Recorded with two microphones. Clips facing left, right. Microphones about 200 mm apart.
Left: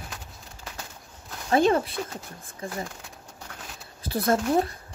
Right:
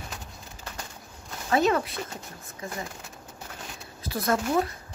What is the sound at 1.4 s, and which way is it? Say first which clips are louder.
Speech: left 2 dB; 30° left (ahead or behind).